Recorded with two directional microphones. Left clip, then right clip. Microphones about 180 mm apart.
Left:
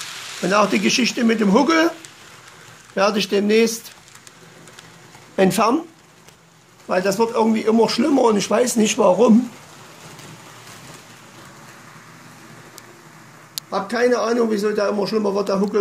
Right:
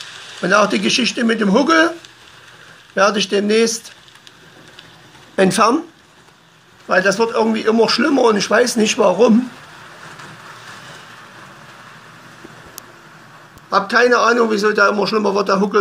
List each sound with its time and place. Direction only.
0.4 s a man's voice: 10° left (ahead or behind)
5.3 s speech: 5° left (ahead or behind)
6.9 s a man's voice: 15° left (ahead or behind)
13.7 s a man's voice: 5° left (ahead or behind)